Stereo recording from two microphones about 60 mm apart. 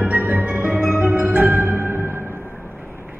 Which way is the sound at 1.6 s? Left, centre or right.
Right.